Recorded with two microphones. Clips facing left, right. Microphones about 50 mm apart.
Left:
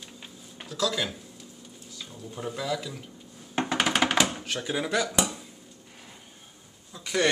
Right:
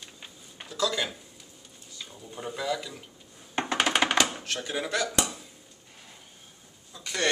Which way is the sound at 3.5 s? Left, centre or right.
Centre.